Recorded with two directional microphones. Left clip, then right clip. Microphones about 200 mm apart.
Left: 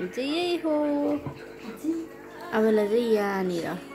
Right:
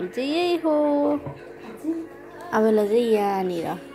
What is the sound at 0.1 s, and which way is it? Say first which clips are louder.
Speech: right 5 dB; 5° right (ahead or behind).